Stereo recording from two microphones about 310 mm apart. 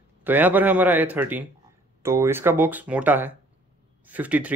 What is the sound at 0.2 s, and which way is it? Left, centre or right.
Speech, centre.